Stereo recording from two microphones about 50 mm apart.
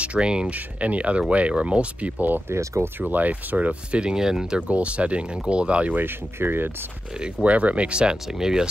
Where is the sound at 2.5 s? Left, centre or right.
Right.